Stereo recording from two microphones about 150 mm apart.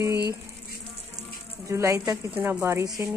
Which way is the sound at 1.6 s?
20° right (ahead or behind).